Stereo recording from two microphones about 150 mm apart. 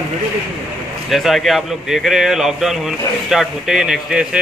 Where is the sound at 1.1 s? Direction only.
Centre (ahead or behind).